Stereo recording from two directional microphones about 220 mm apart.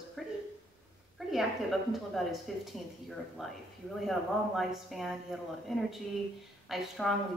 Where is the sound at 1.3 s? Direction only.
Centre (ahead or behind).